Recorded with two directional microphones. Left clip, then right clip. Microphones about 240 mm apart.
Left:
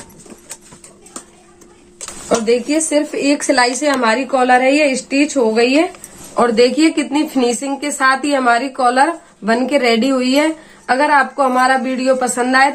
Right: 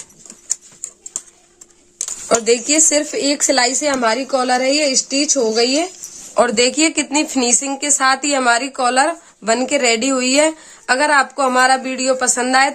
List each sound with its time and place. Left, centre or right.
2.2 s a woman's voice: right